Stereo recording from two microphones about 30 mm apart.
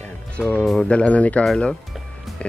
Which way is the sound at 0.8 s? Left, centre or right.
Left.